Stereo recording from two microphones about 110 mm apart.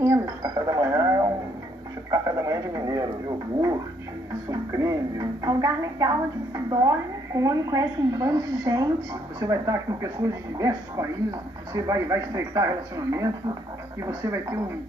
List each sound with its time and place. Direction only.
0.0 s dishes: 30° right (ahead or behind)
2.0 s bird: 30° right (ahead or behind)
4.5 s a woman's voice: 30° right (ahead or behind)